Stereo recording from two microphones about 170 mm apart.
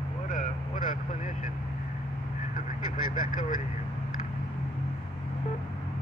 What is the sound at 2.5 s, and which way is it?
Vehicle, 50° left (ahead or behind).